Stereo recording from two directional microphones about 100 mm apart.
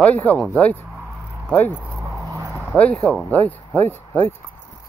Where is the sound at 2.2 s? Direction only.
35° right (ahead or behind).